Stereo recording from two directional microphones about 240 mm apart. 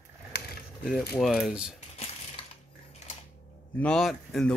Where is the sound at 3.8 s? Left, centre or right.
Centre.